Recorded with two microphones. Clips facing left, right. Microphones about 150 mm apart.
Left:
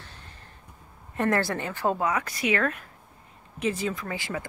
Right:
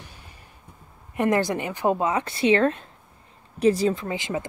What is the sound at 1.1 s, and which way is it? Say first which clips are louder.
Speech: right 3 dB; 15° right (ahead or behind).